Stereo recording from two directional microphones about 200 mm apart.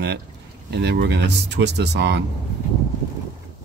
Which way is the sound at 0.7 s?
55° right (ahead or behind).